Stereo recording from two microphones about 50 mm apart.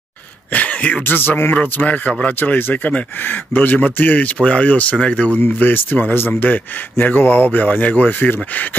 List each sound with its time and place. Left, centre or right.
0.5 s speech: left
1.0 s speech: left
4.4 s speech: left